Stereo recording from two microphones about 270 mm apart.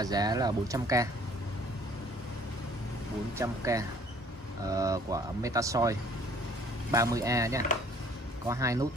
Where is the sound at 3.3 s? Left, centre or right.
Centre.